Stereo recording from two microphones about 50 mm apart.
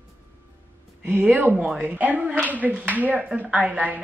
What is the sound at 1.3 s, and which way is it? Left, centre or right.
Speech, right.